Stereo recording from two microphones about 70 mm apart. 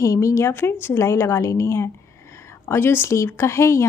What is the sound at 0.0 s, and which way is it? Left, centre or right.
A woman's voice, left.